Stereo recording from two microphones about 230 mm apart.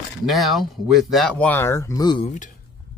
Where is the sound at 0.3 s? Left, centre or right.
Centre.